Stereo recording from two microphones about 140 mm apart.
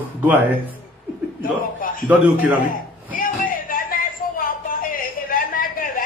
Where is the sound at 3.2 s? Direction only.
80° left.